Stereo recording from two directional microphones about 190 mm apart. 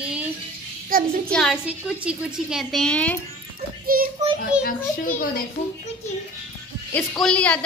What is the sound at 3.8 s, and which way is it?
Speech, 50° right (ahead or behind).